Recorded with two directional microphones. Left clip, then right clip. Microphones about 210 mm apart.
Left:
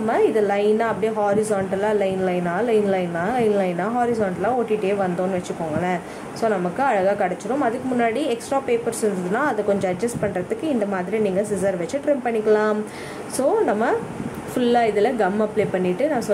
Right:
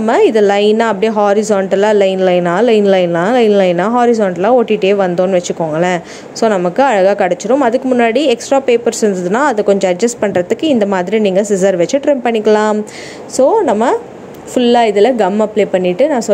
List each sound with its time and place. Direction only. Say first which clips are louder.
0.0 s a woman's voice: right 9 dB; 40° right (ahead or behind)